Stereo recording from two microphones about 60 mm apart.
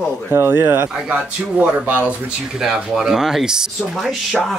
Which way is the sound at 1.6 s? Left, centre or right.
Right.